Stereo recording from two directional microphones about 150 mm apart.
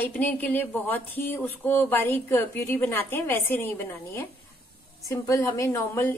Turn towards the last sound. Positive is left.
turn(degrees=15)  # may be behind; listen again after turning